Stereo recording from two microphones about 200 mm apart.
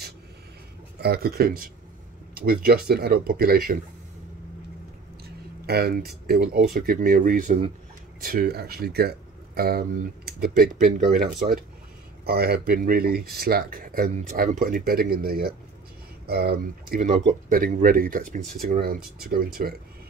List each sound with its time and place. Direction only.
1.0 s speech: 50° right (ahead or behind)
5.7 s speech: 50° right (ahead or behind)